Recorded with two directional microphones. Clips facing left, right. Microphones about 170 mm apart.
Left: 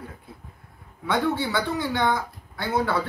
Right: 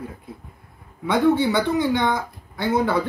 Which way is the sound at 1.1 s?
20° right (ahead or behind).